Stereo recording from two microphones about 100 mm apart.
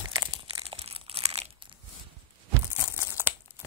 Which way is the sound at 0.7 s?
75° right (ahead or behind).